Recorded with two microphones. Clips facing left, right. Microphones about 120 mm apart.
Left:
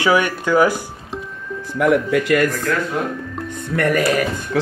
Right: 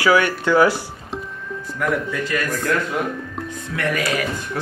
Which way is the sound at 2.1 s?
70° left (ahead or behind).